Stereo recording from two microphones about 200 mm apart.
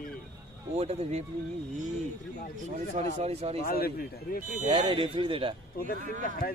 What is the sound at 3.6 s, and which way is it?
Speech, 50° left (ahead or behind).